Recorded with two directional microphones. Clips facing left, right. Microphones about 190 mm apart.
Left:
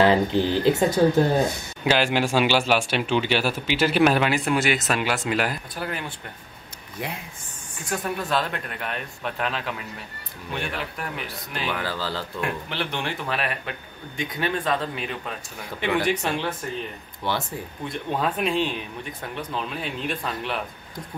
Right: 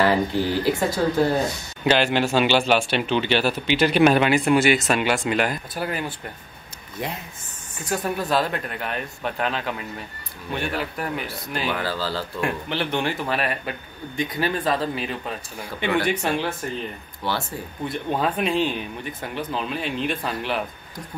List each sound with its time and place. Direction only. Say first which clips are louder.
0.0 s speech: left 1 dB; 20° left (ahead or behind)
1.9 s speech: right 2 dB; 10° left (ahead or behind)
7.9 s speech: right 3 dB; centre (ahead or behind)
12.4 s speech: right 4 dB; centre (ahead or behind)
17.2 s speech: even; 20° left (ahead or behind)
17.8 s speech: right 2 dB; centre (ahead or behind)